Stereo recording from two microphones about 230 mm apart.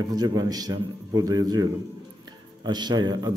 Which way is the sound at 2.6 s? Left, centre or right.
Centre.